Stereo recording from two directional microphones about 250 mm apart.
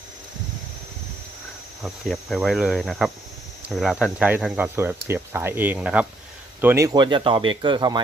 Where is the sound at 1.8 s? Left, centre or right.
Centre.